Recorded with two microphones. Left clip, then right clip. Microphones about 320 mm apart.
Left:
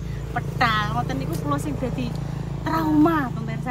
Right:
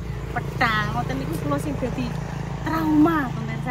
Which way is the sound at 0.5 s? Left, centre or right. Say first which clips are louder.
Left 1 dB; centre.